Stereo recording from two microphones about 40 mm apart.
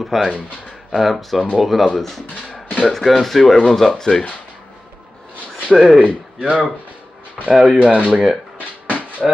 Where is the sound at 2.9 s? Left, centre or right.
Centre.